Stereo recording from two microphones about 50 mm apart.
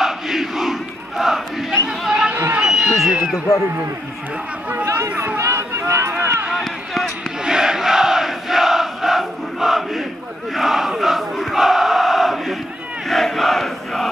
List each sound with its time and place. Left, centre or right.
0.0 s battle cry: centre
2.6 s a sound: centre
4.8 s speech: right
5.4 s a sound: right
6.1 s run: right
6.6 s a sound: centre
7.4 s battle cry: centre
10.5 s crowd: centre
13.1 s battle cry: centre